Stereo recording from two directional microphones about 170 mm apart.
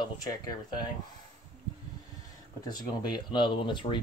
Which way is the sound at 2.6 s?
25° left (ahead or behind).